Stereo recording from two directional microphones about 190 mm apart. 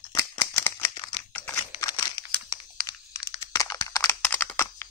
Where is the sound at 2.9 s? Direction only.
20° left (ahead or behind).